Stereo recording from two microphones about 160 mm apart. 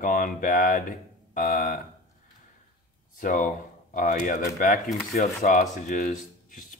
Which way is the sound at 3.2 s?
55° left (ahead or behind).